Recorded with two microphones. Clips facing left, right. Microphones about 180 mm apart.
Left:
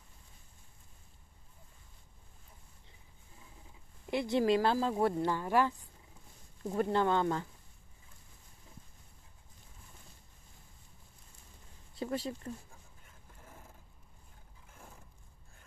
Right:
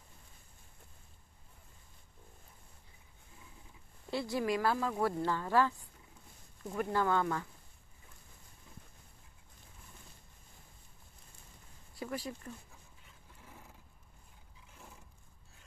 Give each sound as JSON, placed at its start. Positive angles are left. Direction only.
{"t": 4.1, "sound": "speech", "side_deg": 20}
{"t": 6.6, "sound": "speech", "side_deg": 30}
{"t": 12.0, "sound": "speech", "side_deg": 25}